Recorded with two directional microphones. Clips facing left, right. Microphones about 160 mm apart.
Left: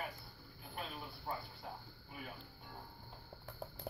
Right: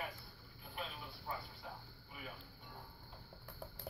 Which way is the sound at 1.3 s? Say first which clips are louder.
Left 2 dB; 35° left (ahead or behind).